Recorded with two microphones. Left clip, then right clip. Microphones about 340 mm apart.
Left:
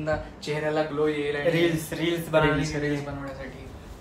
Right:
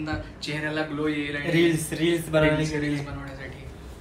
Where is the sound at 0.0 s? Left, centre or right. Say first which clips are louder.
Left 3 dB; left.